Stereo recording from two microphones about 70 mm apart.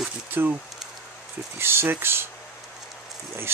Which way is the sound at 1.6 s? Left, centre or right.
Right.